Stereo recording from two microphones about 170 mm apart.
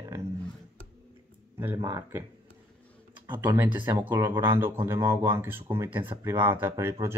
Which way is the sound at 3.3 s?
15° right (ahead or behind).